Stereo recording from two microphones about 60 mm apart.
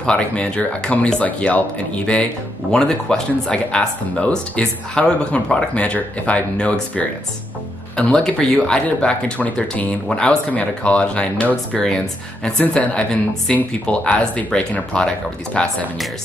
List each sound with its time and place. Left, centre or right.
0.0 s speech: centre
2.7 s speech: centre
11.7 s speech: centre